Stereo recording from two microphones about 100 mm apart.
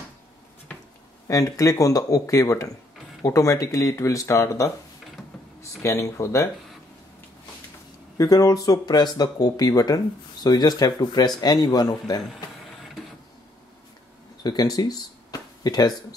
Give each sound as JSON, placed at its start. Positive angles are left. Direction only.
{"t": 1.2, "sound": "speech", "side_deg": 35}
{"t": 8.2, "sound": "speech", "side_deg": 35}
{"t": 14.4, "sound": "speech", "side_deg": 40}